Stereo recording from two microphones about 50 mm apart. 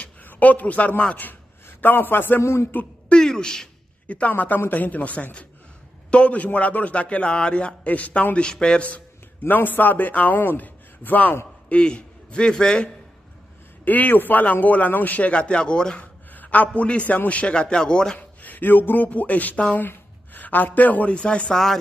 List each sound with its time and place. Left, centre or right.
0.0 s a man's voice: left
2.4 s a man's voice: left
3.1 s a sound: centre
4.3 s a man's voice: left
8.4 s a man's voice: centre
9.4 s a man's voice: left
11.7 s a man's voice: left
13.8 s a man's voice: left; by 16.0 s centre
16.0 s a man's voice: left
18.4 s speech: left